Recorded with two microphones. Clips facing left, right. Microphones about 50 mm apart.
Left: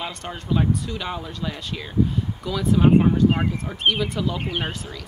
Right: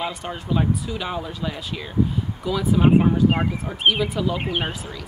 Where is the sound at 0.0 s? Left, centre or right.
Centre.